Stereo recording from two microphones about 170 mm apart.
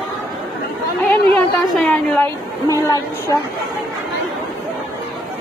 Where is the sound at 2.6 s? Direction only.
20° left (ahead or behind).